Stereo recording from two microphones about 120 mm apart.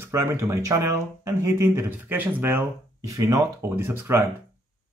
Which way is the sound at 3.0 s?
30° right (ahead or behind).